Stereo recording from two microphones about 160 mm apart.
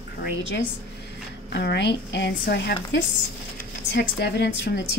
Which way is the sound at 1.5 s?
90° left.